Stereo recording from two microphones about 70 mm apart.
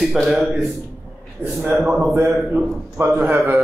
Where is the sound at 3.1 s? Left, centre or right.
Right.